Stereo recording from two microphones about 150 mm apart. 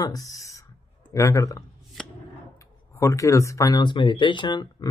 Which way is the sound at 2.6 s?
20° left (ahead or behind).